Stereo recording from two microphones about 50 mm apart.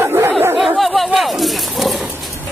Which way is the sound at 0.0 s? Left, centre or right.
Right.